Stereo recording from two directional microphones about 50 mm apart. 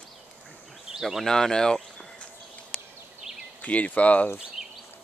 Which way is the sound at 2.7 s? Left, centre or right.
Left.